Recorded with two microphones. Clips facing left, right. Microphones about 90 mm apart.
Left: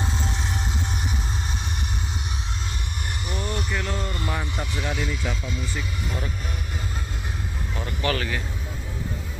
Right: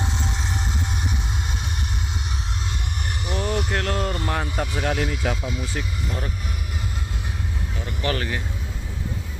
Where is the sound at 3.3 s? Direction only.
90° right; by 4.2 s 70° right (ahead or behind).